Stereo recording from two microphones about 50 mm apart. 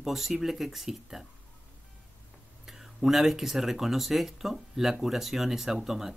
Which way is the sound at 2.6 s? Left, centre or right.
Centre.